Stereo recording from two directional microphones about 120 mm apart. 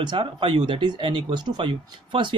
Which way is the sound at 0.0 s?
45° right (ahead or behind).